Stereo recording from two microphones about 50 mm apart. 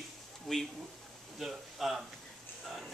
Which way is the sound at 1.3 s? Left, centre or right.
Centre.